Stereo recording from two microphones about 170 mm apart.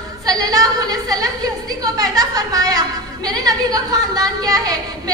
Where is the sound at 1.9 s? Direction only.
20° right (ahead or behind).